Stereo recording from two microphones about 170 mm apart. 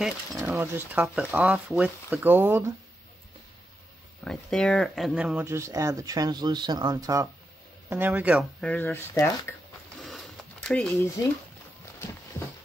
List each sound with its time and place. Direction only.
0.4 s speech: 15° right (ahead or behind)
4.2 s speech: 5° left (ahead or behind); by 7.2 s 20° right (ahead or behind)
7.9 s speech: 10° right (ahead or behind)
8.5 s speech: 10° left (ahead or behind)
10.0 s a sound: centre (ahead or behind)